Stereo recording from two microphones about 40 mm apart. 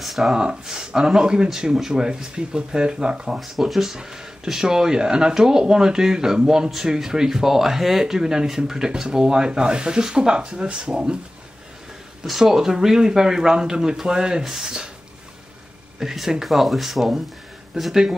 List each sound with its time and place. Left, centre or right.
0.0 s speech: centre
0.3 s speech: centre
3.3 s speech: centre; by 11.1 s right
12.3 s speech: centre
16.0 s speech: centre